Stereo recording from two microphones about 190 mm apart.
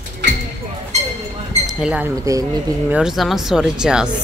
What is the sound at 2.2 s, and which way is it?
Speech, 15° right (ahead or behind).